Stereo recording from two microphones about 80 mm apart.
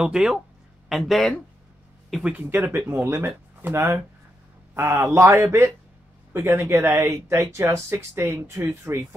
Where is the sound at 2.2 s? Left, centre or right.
Right.